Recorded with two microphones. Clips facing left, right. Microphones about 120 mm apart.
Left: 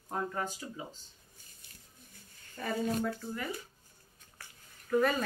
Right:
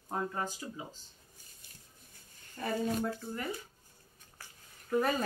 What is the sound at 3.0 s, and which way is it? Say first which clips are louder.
Speech: left 1 dB; 20° right (ahead or behind).